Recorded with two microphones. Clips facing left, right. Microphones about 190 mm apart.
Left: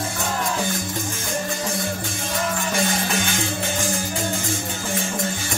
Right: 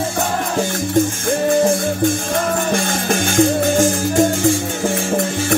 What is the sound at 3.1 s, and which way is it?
Music, 50° right (ahead or behind).